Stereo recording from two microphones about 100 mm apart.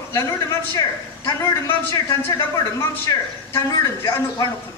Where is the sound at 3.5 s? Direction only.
25° left (ahead or behind).